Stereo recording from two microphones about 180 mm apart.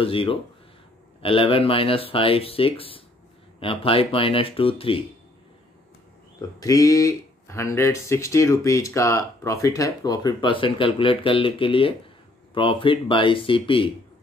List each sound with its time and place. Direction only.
0.0 s speech: 30° left (ahead or behind)
6.6 s speech: 20° left (ahead or behind)